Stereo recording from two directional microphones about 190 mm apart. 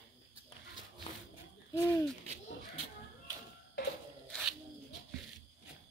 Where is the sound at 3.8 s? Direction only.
75° left (ahead or behind).